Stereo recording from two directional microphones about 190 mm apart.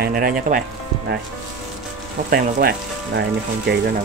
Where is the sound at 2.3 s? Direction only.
50° right (ahead or behind).